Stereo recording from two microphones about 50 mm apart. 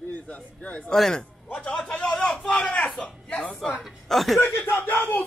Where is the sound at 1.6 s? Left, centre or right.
Centre.